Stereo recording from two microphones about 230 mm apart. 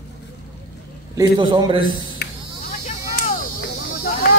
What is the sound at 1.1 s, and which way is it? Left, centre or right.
Speech, centre.